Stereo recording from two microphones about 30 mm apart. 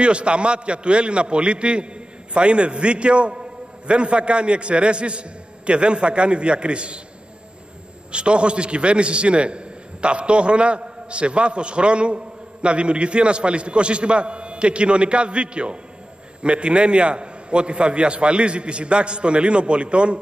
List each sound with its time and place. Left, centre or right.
0.0 s a man's voice: right
8.1 s a man's voice: right